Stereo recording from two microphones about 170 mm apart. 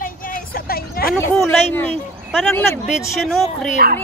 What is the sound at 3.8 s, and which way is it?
Speech, 65° right (ahead or behind).